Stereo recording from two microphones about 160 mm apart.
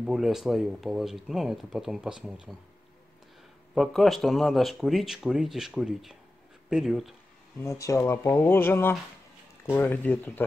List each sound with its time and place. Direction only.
0.0 s speech: 5° right (ahead or behind)
3.7 s speech: centre (ahead or behind)
7.6 s speech: 20° left (ahead or behind)